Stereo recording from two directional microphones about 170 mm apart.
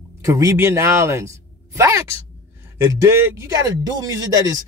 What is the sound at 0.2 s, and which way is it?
A man's voice, 20° right (ahead or behind).